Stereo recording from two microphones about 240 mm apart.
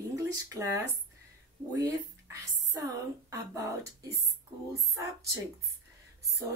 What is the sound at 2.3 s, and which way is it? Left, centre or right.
Speech, centre.